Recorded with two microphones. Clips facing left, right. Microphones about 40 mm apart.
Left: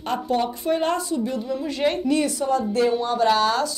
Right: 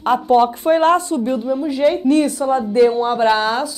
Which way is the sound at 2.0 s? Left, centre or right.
Right.